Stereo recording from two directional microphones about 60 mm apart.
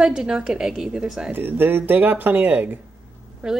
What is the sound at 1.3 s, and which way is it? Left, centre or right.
Speech, right.